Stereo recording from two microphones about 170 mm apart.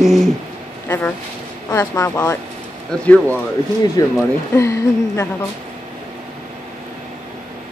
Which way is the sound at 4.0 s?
20° left (ahead or behind).